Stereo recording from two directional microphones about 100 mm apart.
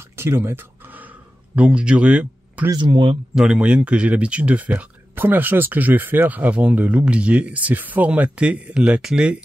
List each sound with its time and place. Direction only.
0.1 s a sound: 25° right (ahead or behind)
2.7 s speech: 50° right (ahead or behind)
3.3 s speech: 5° right (ahead or behind)